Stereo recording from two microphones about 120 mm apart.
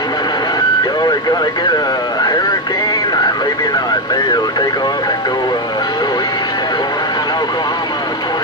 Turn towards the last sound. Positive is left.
turn(degrees=35)  # may be behind; listen again after turning